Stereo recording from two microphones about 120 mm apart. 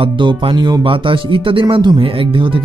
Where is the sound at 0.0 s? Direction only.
45° right (ahead or behind).